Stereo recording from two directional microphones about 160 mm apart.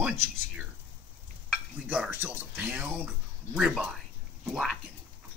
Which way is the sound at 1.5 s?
10° right (ahead or behind).